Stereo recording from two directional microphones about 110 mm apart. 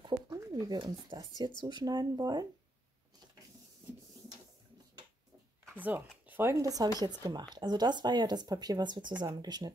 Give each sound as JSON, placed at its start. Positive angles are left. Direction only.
{"t": 0.3, "sound": "speech", "side_deg": -35}
{"t": 5.8, "sound": "speech", "side_deg": -15}
{"t": 6.5, "sound": "speech", "side_deg": -30}